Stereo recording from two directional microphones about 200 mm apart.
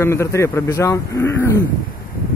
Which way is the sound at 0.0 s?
15° left (ahead or behind).